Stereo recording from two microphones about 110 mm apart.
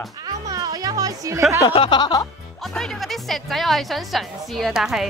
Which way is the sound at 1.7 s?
50° left (ahead or behind).